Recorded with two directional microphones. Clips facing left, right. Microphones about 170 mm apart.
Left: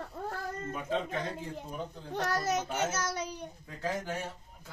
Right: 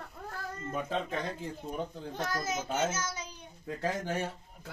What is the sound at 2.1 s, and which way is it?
A child's voice, 70° left (ahead or behind).